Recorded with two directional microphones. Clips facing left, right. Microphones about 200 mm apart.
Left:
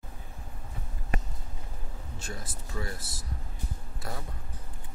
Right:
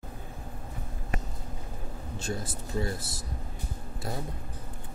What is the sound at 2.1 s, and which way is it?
Speech, 30° right (ahead or behind).